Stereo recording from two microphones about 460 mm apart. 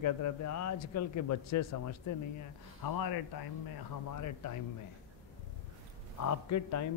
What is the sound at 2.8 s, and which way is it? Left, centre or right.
Speech, left.